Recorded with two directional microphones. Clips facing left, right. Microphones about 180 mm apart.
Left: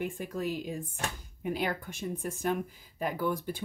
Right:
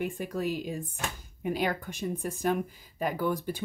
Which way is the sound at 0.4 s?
15° right (ahead or behind).